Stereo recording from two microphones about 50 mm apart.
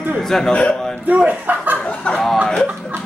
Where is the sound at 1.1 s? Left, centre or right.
Right.